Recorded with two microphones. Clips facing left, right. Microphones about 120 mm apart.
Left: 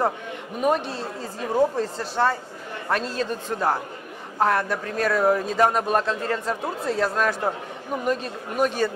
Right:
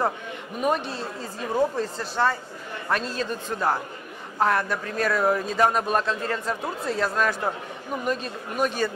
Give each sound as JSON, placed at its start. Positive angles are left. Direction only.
{"t": 0.6, "sound": "speech", "side_deg": 25}
{"t": 3.5, "sound": "speech", "side_deg": 30}
{"t": 8.1, "sound": "speech", "side_deg": 40}